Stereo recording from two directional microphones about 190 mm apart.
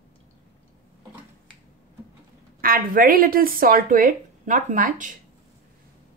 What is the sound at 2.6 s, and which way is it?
Speech, 50° right (ahead or behind).